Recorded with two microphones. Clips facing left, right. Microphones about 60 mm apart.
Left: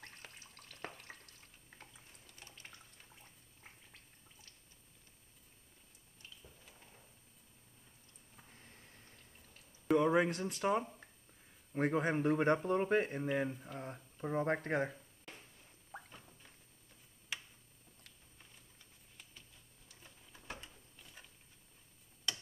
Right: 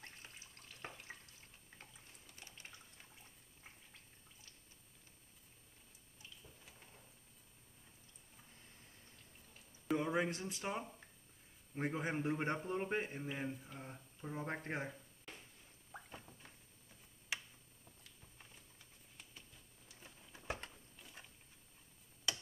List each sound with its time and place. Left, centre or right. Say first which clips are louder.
0.2 s drip: left 2 dB; left
10.0 s a sound: left 6 dB; left
10.4 s a man's voice: left 8 dB; left
13.7 s a sound: left 6 dB; left
14.2 s a man's voice: left 8 dB; left
16.1 s rodents: right 2 dB; centre
19.9 s tick-tock: right 1 dB; centre
20.7 s patter: right 1 dB; centre